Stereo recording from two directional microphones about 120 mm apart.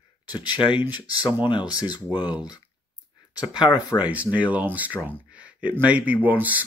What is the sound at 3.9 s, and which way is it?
Speech, 10° right (ahead or behind).